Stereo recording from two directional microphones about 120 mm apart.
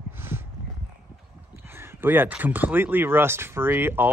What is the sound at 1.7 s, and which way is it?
Speech, 20° right (ahead or behind).